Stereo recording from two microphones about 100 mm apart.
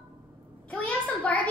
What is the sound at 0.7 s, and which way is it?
Speech, 15° left (ahead or behind).